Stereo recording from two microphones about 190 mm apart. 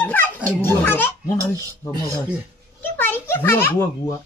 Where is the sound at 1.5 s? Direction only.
15° left (ahead or behind).